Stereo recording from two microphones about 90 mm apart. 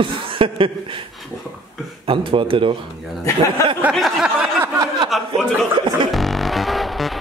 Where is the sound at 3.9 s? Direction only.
Centre (ahead or behind).